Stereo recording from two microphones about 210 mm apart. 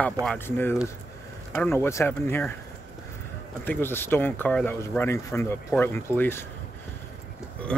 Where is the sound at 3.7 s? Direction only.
10° left (ahead or behind).